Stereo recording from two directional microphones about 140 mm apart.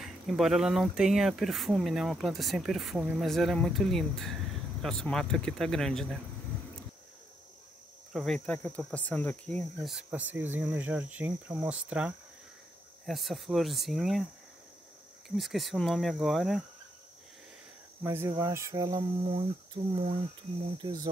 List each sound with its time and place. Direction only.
0.0 s speech: centre (ahead or behind)
8.1 s speech: centre (ahead or behind)
15.2 s speech: centre (ahead or behind)
18.0 s speech: 15° right (ahead or behind)
19.2 s speech: 40° right (ahead or behind)